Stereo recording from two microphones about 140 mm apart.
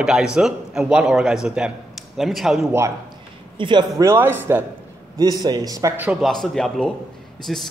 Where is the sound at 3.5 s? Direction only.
35° right (ahead or behind).